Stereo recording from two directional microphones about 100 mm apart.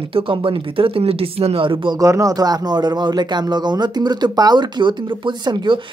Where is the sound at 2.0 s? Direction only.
35° right (ahead or behind).